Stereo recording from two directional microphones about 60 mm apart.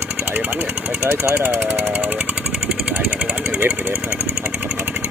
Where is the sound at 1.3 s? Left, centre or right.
Right.